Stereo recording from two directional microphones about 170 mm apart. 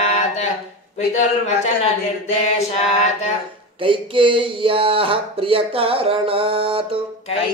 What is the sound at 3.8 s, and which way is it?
Speech, 30° right (ahead or behind).